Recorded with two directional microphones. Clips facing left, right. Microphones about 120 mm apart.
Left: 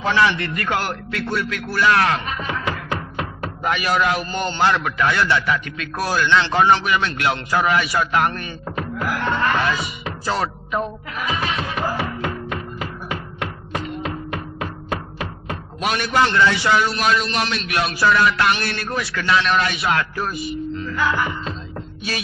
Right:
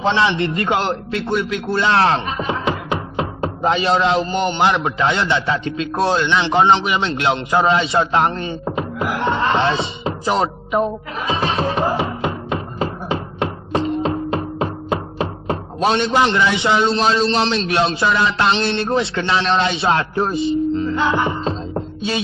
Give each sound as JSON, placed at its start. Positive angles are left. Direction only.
{"t": 0.0, "sound": "a man's voice", "side_deg": -25}